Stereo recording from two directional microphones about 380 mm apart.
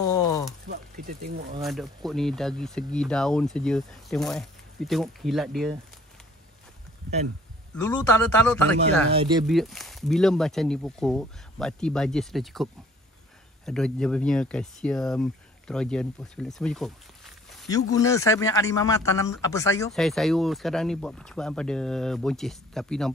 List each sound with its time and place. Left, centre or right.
0.7 s speech: right
1.6 s speech: centre
7.7 s speech: centre
9.1 s speech: centre
9.5 s speech: centre
13.7 s speech: centre